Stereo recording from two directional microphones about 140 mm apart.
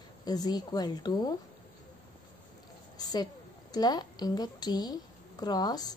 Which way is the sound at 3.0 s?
30° left (ahead or behind).